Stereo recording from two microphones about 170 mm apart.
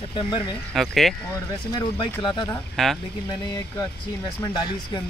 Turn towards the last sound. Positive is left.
turn(degrees=20)  # may be behind; listen again after turning